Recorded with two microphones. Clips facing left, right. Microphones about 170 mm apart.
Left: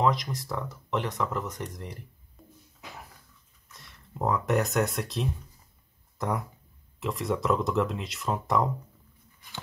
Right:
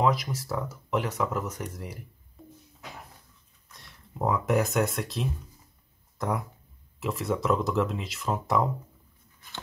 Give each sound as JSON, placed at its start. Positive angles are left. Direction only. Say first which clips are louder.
{"t": 0.0, "sound": "speech", "louder": "right 1 dB", "side_deg": -5}
{"t": 2.4, "sound": "a sound", "louder": "right 5 dB", "side_deg": 0}
{"t": 3.7, "sound": "speech", "louder": "right 1 dB", "side_deg": 0}